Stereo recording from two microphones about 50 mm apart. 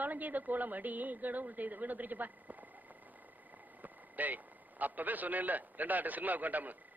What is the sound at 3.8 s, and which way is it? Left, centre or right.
A man's voice, right.